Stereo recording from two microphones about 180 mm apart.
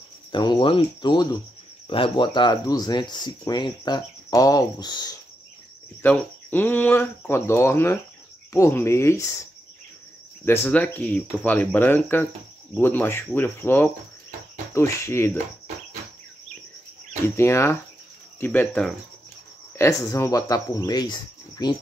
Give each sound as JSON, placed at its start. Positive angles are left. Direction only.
{"t": 0.3, "sound": "speech", "side_deg": 25}
{"t": 6.0, "sound": "speech", "side_deg": 10}
{"t": 10.4, "sound": "speech", "side_deg": 10}
{"t": 17.4, "sound": "speech", "side_deg": 15}